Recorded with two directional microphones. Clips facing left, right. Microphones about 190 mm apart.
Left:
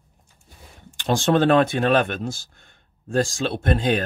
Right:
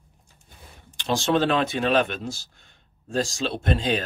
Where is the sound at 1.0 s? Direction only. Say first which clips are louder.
Left 3 dB; 50° left (ahead or behind).